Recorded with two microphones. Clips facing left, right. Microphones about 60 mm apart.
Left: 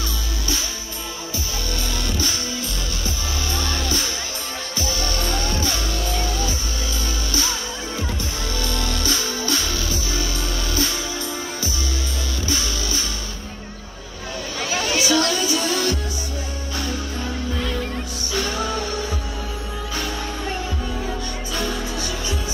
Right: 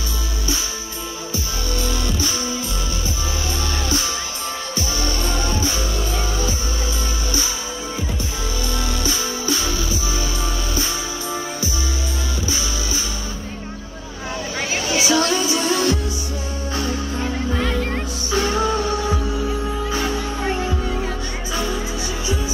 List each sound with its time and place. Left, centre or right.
1.8 s music: right
3.5 s music: right
5.4 s music: centre
8.6 s music: centre
12.4 s music: centre
15.0 s music: right
17.2 s music: right
18.3 s music: right